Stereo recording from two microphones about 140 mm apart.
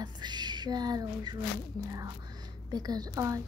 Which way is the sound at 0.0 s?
30° right (ahead or behind).